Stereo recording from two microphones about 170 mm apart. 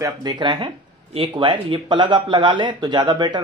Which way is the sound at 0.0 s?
25° right (ahead or behind).